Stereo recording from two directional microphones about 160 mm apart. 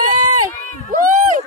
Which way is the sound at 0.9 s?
55° right (ahead or behind).